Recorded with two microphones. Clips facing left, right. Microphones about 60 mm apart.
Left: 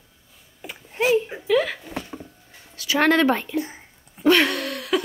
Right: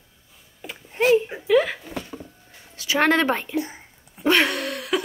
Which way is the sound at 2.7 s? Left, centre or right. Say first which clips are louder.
Left 1 dB; right.